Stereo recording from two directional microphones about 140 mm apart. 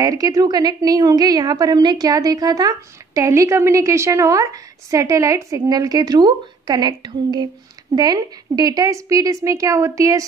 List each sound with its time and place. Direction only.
0.0 s a woman's voice: 25° right (ahead or behind)